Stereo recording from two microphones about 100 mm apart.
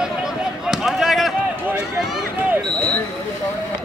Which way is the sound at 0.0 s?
5° right (ahead or behind).